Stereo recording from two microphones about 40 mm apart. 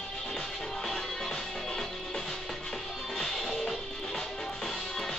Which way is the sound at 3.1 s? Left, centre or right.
Centre.